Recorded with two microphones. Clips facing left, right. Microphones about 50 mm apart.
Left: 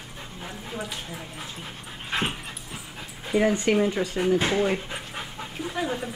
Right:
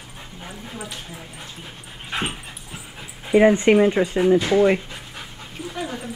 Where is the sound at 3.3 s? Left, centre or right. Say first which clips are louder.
Right 7 dB; right.